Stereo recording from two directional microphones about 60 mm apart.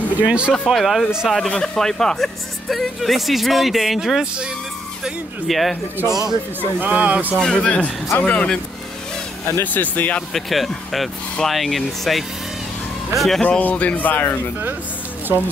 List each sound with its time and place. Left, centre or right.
0.2 s speech: right
0.7 s speech: centre
5.5 s speech: centre
6.8 s speech: right
7.3 s speech: centre
9.6 s speech: left
10.3 s speech: centre
13.4 s speech: centre